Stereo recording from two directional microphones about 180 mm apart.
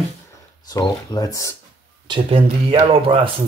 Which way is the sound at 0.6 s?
20° left (ahead or behind).